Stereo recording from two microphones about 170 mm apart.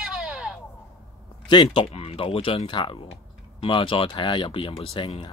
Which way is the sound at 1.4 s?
30° left (ahead or behind).